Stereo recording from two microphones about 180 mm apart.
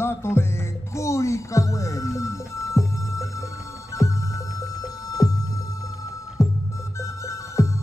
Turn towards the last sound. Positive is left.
turn(degrees=15)  # may be behind; listen again after turning